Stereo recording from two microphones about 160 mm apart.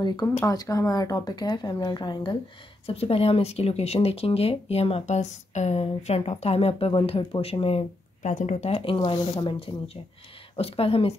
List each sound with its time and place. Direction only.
0.0 s a woman's voice: 25° left (ahead or behind)
2.9 s speech: 40° left (ahead or behind)